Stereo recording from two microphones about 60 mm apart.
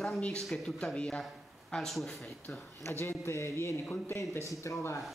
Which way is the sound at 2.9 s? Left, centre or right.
Left.